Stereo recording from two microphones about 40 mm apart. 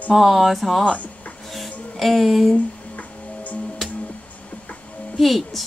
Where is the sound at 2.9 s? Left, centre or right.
Left.